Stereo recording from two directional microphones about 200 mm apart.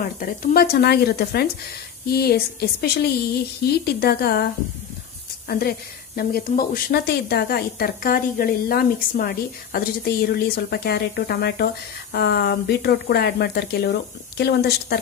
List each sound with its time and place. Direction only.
0.2 s a woman's voice: 45° left (ahead or behind)
5.5 s a woman's voice: 50° left (ahead or behind)